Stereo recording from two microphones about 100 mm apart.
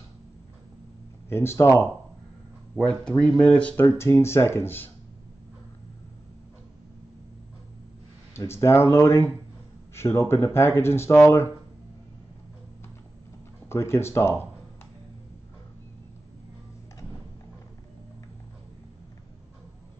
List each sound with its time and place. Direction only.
1.3 s speech: 25° left (ahead or behind)
2.8 s speech: 10° left (ahead or behind)
3.7 s speech: 25° left (ahead or behind)
8.3 s speech: 25° left (ahead or behind)
13.7 s speech: 25° left (ahead or behind)